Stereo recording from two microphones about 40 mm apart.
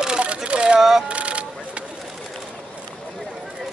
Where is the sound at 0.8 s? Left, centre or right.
Centre.